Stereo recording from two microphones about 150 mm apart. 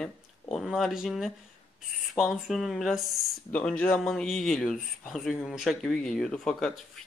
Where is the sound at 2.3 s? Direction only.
Centre (ahead or behind).